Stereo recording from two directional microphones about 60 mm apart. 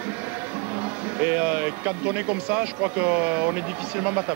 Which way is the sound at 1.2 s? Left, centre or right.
Right.